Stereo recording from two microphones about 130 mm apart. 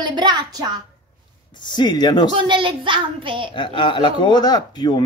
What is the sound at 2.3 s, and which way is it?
A woman's voice, 40° right (ahead or behind).